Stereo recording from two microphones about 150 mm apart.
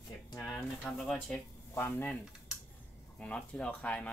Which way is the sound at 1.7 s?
15° left (ahead or behind).